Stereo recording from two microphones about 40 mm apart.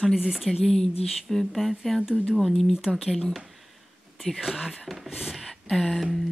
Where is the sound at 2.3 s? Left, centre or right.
Centre.